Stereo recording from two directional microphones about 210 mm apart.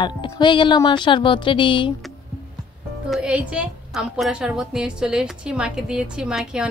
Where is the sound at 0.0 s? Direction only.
20° left (ahead or behind).